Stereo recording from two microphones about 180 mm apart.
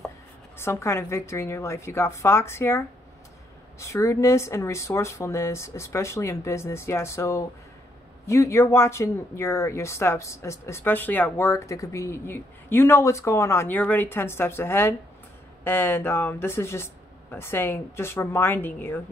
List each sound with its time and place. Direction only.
0.6 s speech: 15° left (ahead or behind)
3.8 s speech: 15° left (ahead or behind)